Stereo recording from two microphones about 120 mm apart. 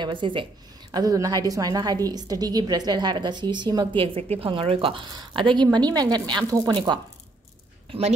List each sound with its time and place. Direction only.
0.0 s a woman's voice: 45° right (ahead or behind)
0.9 s a woman's voice: 30° right (ahead or behind)